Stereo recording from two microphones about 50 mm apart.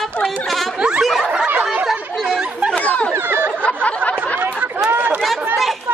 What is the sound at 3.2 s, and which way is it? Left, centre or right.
Chatter, right.